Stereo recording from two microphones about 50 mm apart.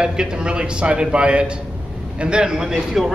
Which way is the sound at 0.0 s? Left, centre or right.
Centre.